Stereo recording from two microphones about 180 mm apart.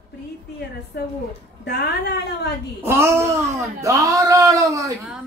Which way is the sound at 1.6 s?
65° left (ahead or behind).